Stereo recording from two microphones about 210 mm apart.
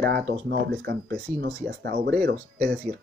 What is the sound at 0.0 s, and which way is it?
Speech, 50° right (ahead or behind).